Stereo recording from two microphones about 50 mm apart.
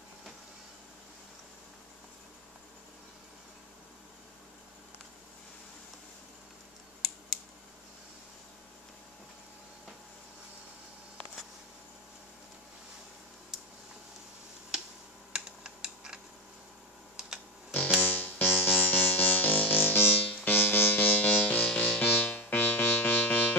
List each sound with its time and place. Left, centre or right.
15.3 s computer keyboard: centre
18.0 s music: left
22.0 s music: left
22.3 s music: left